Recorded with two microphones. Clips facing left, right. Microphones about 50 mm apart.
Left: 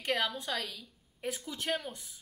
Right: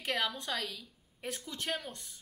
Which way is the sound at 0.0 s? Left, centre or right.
Centre.